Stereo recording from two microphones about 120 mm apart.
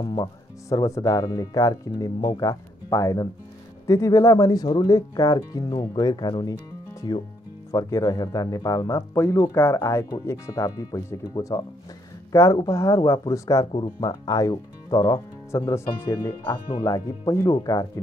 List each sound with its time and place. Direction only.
0.0 s speech: 35° left (ahead or behind)
7.7 s speech: 25° left (ahead or behind)
16.7 s speech: 30° left (ahead or behind)